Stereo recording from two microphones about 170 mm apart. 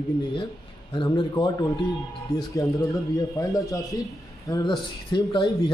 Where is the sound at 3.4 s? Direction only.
20° left (ahead or behind).